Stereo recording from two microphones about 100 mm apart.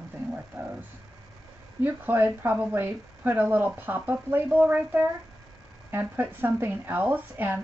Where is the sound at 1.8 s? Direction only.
20° right (ahead or behind).